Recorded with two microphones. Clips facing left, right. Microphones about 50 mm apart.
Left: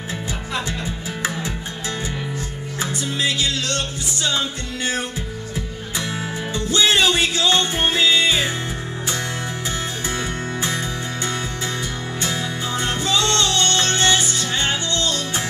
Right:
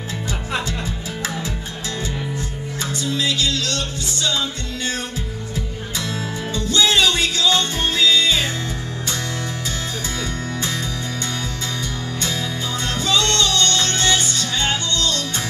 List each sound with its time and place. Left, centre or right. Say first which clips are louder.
2.8 s music: even; left
5.9 s music: left 1 dB; left
12.2 s music: left 1 dB; left